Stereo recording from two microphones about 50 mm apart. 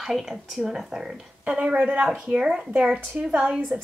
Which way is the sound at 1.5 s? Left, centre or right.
Right.